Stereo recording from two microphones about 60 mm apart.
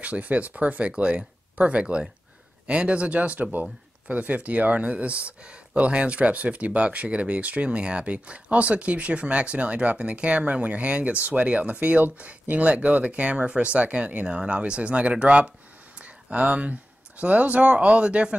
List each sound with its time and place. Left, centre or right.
0.0 s speech: right
16.0 s a sound: right
17.2 s speech: right